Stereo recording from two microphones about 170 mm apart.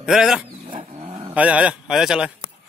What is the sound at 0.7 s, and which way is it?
Dog, 35° right (ahead or behind).